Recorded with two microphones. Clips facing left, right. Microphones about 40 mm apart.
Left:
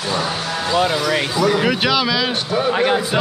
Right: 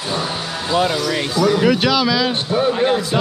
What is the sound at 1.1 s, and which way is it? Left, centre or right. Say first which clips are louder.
A man's voice: even; centre.